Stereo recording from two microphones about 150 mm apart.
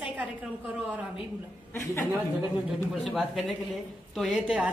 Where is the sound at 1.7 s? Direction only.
15° left (ahead or behind).